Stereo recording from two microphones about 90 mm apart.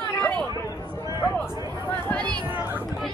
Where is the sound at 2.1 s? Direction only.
15° left (ahead or behind).